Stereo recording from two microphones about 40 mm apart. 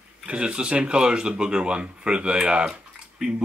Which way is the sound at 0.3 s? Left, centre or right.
Right.